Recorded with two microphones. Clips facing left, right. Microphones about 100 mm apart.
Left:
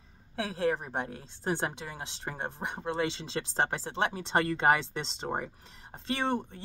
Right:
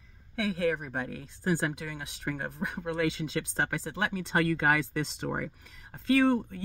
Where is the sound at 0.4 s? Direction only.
30° left (ahead or behind).